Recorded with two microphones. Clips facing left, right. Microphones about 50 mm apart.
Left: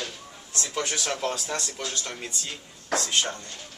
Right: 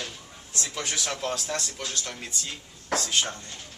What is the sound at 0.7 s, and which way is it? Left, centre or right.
Speech, centre.